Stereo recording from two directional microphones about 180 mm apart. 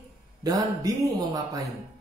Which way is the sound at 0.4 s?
20° right (ahead or behind).